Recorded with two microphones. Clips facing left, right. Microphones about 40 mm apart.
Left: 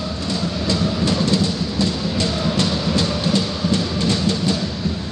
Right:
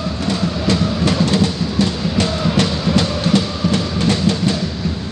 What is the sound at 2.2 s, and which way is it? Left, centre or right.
Music, right.